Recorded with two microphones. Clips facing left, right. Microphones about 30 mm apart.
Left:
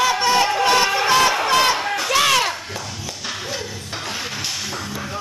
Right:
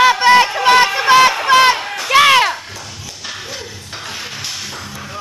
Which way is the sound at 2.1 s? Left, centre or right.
Right.